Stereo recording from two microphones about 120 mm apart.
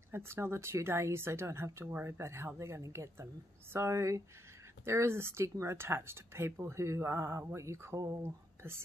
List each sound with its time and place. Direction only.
0.1 s speech: 20° right (ahead or behind)